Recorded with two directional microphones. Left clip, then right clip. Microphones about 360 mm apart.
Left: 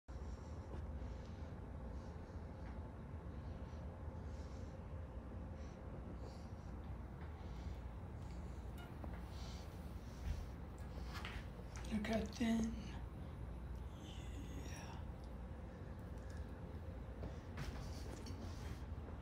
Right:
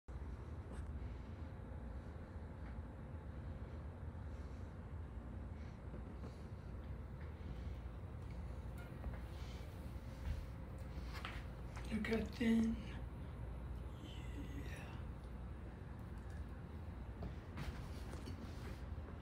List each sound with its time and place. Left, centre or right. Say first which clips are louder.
11.9 s speech: right 1 dB; centre